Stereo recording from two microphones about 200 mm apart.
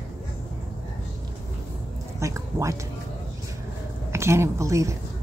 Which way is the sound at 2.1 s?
15° right (ahead or behind).